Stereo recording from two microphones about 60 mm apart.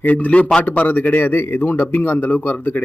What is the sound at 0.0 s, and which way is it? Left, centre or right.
A man's voice, left.